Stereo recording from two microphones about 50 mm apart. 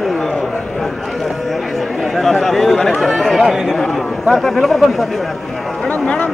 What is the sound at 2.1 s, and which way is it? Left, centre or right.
Chatter, centre.